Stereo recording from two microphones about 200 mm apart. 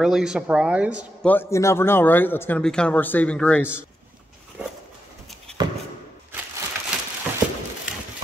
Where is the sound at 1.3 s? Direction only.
10° left (ahead or behind).